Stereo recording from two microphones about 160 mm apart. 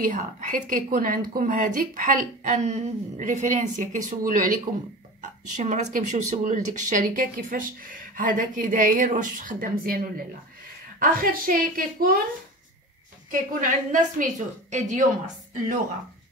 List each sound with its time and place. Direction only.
0.0 s a woman's voice: 50° right (ahead or behind)
13.3 s a woman's voice: 55° right (ahead or behind)